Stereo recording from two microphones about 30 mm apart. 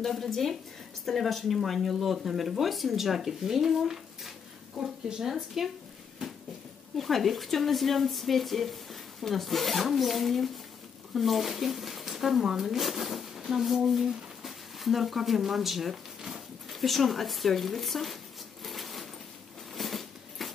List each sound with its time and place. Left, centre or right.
0.0 s speech: centre
7.0 s speech: centre
12.4 s speech: centre
12.7 s speech: centre
15.9 s a sound: centre
16.6 s zipper: centre
19.7 s a sound: centre